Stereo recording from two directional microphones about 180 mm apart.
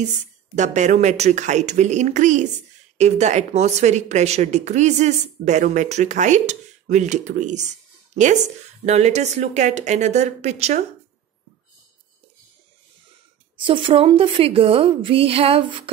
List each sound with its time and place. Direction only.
0.6 s a woman's voice: 40° right (ahead or behind)
8.8 s a woman's voice: 40° right (ahead or behind)
13.6 s a woman's voice: 30° right (ahead or behind)